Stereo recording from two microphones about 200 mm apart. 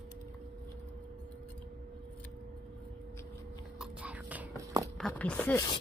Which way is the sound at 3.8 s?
5° right (ahead or behind).